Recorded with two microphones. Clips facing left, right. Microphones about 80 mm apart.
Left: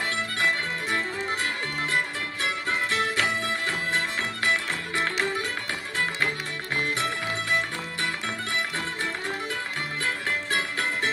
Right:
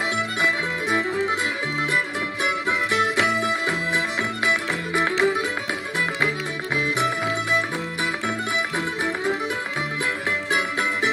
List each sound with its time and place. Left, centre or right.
0.4 s music: right
2.4 s music: right
8.7 s music: right
10.5 s music: right